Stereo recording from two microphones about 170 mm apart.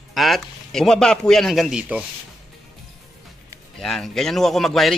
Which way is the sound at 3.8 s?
Centre (ahead or behind).